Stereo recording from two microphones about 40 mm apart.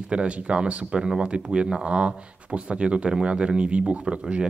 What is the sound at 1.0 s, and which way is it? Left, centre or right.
Speech, centre.